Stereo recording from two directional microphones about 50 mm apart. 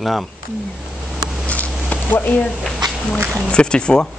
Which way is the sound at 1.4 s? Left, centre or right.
Left.